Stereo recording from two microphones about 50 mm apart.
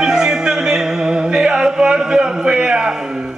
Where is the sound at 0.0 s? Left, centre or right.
Centre.